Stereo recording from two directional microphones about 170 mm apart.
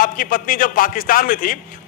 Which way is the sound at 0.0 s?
55° left (ahead or behind).